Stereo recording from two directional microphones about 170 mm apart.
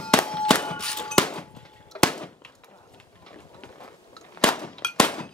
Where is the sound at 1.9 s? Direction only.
5° left (ahead or behind).